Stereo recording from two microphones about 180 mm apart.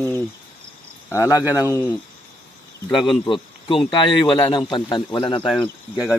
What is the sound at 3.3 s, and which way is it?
A man's voice, 30° left (ahead or behind).